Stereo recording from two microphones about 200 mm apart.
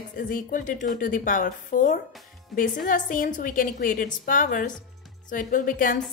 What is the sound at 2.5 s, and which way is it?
Speech, centre (ahead or behind).